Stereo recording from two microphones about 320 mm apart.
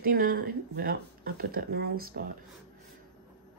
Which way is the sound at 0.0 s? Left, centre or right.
Right.